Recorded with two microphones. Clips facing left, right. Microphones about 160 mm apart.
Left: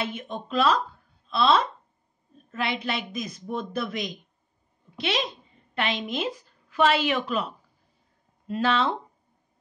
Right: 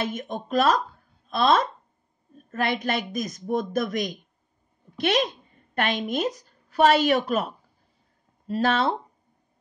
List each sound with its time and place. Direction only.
0.0 s a woman's voice: 45° right (ahead or behind)